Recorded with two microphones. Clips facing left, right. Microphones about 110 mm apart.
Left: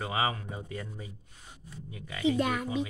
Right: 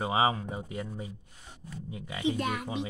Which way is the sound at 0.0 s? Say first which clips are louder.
Right 4 dB; 25° right (ahead or behind).